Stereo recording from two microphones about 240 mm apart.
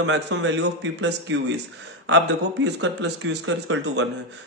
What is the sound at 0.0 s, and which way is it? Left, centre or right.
Speech, right.